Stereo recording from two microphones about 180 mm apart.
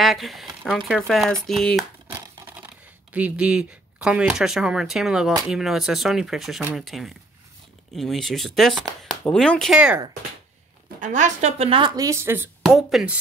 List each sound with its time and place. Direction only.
0.0 s speech: centre (ahead or behind)
2.0 s a sound: 20° right (ahead or behind)
3.1 s speech: 10° right (ahead or behind)
11.0 s speech: 40° right (ahead or behind); by 12.4 s 15° right (ahead or behind)
12.6 s speech: centre (ahead or behind)